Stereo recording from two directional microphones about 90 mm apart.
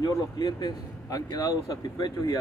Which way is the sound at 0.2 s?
50° left (ahead or behind).